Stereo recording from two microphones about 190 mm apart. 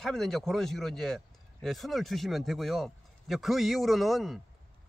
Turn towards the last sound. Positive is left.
turn(degrees=0)  # may be behind; listen again after turning